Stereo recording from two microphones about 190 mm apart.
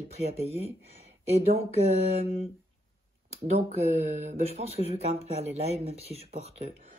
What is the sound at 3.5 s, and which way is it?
Speech, 35° right (ahead or behind).